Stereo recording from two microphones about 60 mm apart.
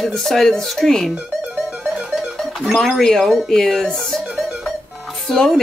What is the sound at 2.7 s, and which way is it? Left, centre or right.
A woman's voice, centre.